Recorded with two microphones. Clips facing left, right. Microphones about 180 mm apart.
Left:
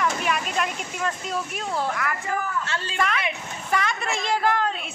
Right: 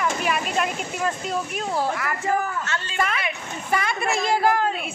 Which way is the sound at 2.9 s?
5° right (ahead or behind).